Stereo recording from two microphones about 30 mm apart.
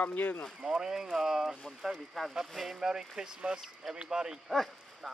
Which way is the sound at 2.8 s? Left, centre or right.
Right.